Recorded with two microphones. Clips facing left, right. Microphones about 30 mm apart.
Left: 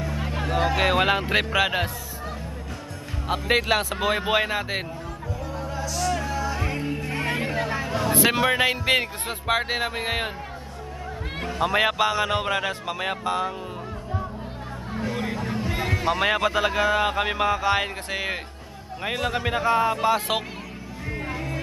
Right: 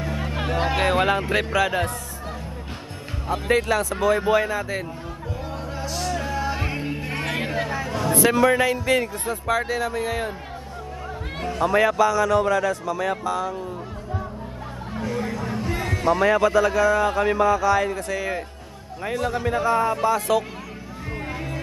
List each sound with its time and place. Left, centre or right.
0.8 s music: centre
3.4 s speech: left
5.8 s music: right
6.2 s music: right
6.7 s music: centre
7.0 s a sound: right
7.8 s a sound: centre
8.1 s speech: left
11.6 s speech: left
15.1 s music: left
15.4 s a sound: centre
15.7 s speech: left
21.1 s music: centre